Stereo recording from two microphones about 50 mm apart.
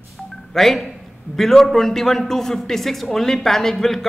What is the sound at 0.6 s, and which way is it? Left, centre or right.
A man's voice, centre.